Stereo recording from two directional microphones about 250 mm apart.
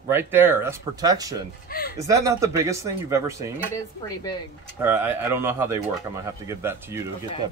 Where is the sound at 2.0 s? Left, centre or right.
Centre.